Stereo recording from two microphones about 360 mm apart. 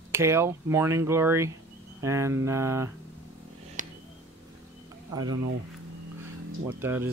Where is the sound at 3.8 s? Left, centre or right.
Right.